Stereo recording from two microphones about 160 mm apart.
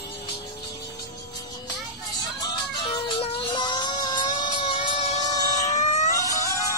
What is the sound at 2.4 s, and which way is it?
Music, 30° left (ahead or behind).